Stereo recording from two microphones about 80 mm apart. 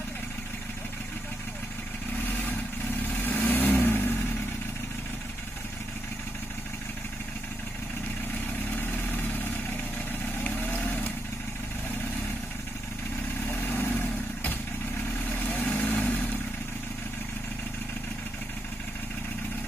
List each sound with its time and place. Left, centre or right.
3.2 s vehicle: left
10.4 s vehicle: left
13.5 s vehicle: left